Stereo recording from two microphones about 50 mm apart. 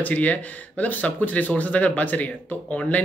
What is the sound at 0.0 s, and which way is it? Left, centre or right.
Speech, left.